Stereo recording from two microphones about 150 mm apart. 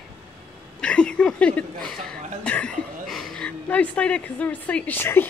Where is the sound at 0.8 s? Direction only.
5° left (ahead or behind).